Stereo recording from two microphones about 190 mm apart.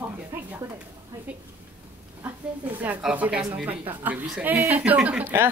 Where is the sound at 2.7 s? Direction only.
10° right (ahead or behind).